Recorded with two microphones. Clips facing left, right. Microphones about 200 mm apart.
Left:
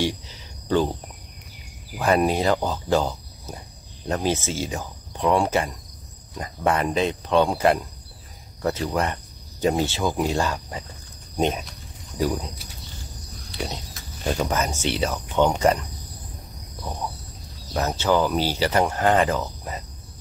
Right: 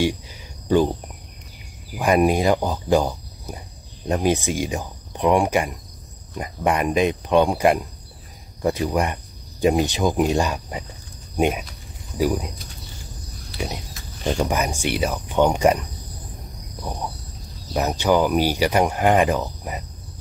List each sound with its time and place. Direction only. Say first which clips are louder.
0.0 s cricket: right 3 dB; 15° right (ahead or behind)
2.0 s speech: right 3 dB; 15° right (ahead or behind)
13.9 s speech: right 2 dB; 5° right (ahead or behind)
17.7 s speech: right 2 dB; 15° right (ahead or behind)